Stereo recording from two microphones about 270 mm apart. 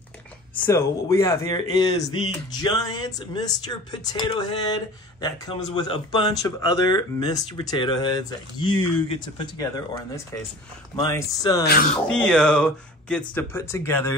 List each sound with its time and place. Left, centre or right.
0.7 s speech: centre